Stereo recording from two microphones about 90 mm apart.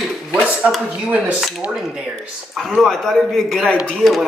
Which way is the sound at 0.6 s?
15° right (ahead or behind).